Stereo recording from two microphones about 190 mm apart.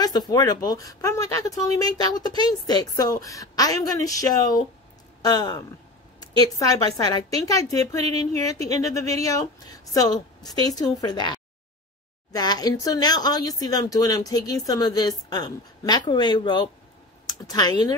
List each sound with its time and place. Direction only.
0.3 s a woman's voice: 20° left (ahead or behind)